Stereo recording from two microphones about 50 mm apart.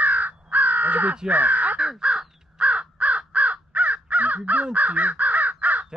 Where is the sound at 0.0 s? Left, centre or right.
Right.